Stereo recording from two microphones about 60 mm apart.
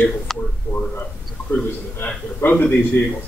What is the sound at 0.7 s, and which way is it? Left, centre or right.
Speech, left.